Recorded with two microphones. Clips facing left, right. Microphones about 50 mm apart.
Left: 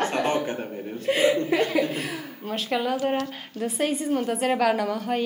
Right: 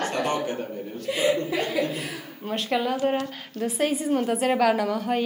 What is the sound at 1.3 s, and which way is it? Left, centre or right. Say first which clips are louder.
Speech: left 3 dB; left.